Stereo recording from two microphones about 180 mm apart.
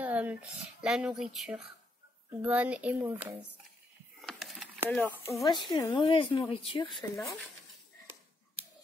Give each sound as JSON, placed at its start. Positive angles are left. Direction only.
{"t": 0.0, "sound": "speech", "side_deg": -10}
{"t": 4.2, "sound": "a sound", "side_deg": 0}
{"t": 4.8, "sound": "speech", "side_deg": 10}
{"t": 5.4, "sound": "a woman's voice", "side_deg": 25}
{"t": 7.2, "sound": "speech", "side_deg": 0}